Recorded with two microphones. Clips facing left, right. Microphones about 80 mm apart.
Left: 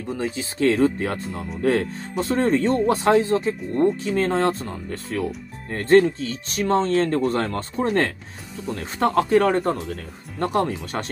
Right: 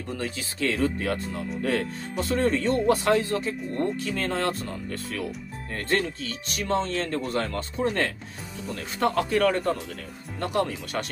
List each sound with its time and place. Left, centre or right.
0.1 s speech: centre
0.6 s speech: left